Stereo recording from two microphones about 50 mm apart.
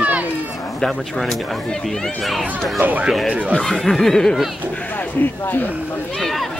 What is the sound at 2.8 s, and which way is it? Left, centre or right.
Speech, right.